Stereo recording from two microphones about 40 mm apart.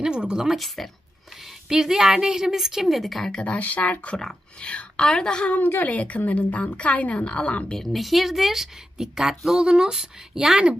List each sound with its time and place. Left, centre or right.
0.0 s a sound: right
0.8 s speech: centre
1.7 s a woman's voice: centre
3.4 s a woman's voice: left
5.9 s a woman's voice: left
7.2 s a woman's voice: left
7.9 s a woman's voice: centre
9.6 s speech: centre
9.9 s a woman's voice: centre